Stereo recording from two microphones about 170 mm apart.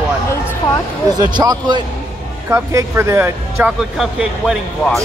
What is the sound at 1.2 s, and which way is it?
Speech, 25° right (ahead or behind).